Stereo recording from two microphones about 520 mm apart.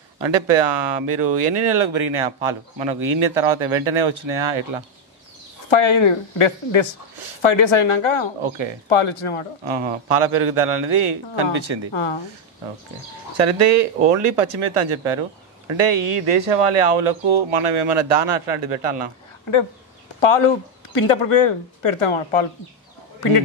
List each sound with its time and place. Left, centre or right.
0.3 s speech: right
5.7 s speech: left
9.7 s speech: right
11.9 s speech: left
13.5 s speech: right
20.2 s speech: left